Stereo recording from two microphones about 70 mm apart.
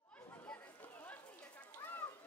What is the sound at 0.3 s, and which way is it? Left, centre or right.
Chatter, left.